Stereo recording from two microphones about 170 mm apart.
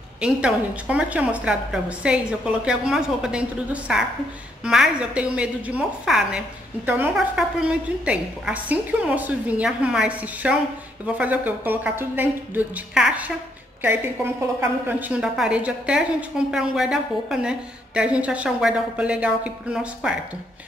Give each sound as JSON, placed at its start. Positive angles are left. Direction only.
{"t": 0.2, "sound": "a woman's voice", "side_deg": -5}